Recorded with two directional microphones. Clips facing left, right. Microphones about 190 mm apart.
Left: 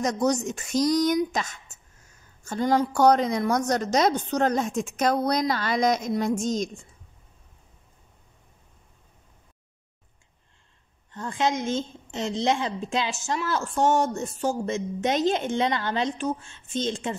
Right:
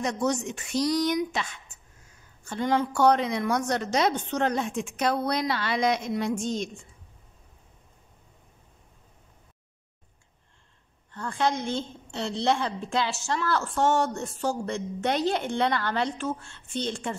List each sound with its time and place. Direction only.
0.0 s a woman's voice: 40° left (ahead or behind)
11.1 s a woman's voice: 20° left (ahead or behind)